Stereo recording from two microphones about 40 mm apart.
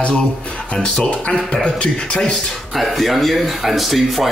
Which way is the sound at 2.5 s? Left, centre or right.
Centre.